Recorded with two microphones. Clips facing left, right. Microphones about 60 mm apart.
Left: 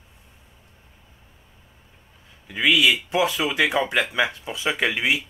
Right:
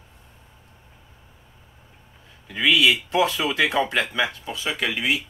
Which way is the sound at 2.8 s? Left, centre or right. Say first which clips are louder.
Right 2 dB; centre.